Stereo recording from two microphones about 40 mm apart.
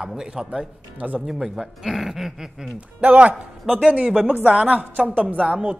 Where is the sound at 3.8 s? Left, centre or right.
Centre.